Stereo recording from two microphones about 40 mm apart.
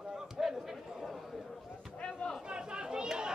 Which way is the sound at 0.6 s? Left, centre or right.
Centre.